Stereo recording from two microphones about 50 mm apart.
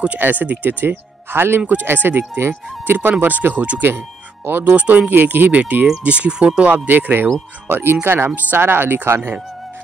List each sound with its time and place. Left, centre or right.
0.2 s speech: right
4.7 s speech: right
6.7 s speech: right
7.6 s speech: right